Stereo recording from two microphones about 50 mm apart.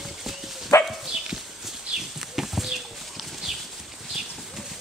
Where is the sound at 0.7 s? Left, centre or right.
Left.